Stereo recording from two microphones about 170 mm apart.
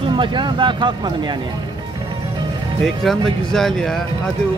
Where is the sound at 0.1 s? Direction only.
30° right (ahead or behind).